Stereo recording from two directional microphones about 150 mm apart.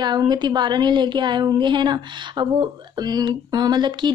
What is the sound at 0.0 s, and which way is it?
A woman's voice, 30° right (ahead or behind).